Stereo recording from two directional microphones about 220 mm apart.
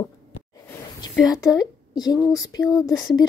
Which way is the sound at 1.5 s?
15° left (ahead or behind).